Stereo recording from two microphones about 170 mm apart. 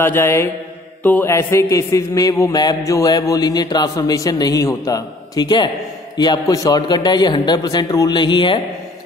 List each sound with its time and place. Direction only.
0.0 s mantra: 15° left (ahead or behind)
1.0 s a man's voice: 15° left (ahead or behind)